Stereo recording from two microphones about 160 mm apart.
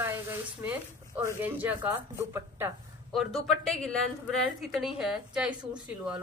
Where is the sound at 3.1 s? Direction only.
Centre (ahead or behind).